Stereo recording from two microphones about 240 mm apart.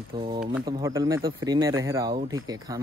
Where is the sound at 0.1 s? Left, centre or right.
Centre.